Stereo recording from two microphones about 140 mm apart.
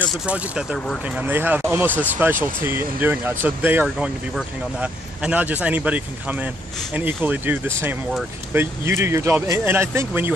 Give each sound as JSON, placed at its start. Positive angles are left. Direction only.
{"t": 0.1, "sound": "speech", "side_deg": -5}